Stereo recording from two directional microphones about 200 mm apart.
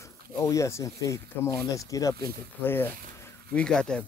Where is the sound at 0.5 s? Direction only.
15° left (ahead or behind).